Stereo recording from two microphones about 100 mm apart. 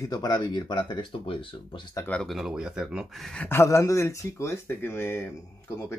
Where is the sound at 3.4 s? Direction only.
30° left (ahead or behind).